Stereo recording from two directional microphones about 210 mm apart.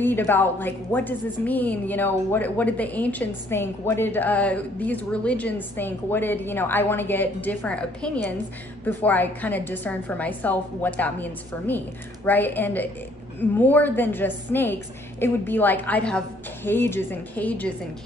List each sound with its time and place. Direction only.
0.0 s a woman's voice: 10° left (ahead or behind)